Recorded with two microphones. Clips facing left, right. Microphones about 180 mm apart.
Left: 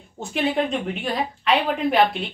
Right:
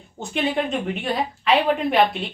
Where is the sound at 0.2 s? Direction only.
Centre (ahead or behind).